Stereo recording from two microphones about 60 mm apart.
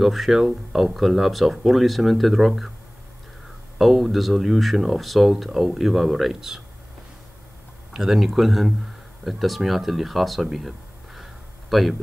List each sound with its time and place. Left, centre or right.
0.0 s speech: centre
3.7 s speech: centre
7.9 s speech: centre
11.7 s speech: centre